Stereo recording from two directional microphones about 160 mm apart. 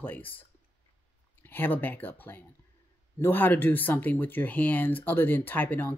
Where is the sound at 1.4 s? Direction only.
10° left (ahead or behind).